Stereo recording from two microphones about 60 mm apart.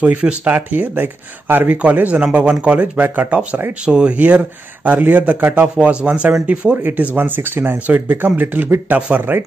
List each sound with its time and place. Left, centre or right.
0.0 s speech: right